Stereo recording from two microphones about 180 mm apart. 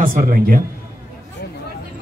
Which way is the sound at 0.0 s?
50° right (ahead or behind).